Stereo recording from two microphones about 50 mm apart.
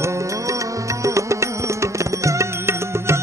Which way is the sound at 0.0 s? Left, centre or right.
Right.